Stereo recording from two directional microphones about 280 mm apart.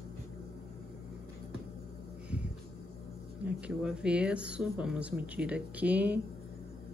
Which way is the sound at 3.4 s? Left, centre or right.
Centre.